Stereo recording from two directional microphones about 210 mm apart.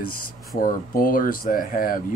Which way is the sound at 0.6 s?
40° left (ahead or behind).